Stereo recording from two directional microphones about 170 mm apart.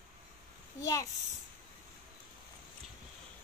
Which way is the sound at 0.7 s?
20° left (ahead or behind).